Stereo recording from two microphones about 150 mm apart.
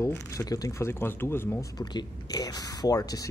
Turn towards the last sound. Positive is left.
turn(degrees=25)  # may be behind; listen again after turning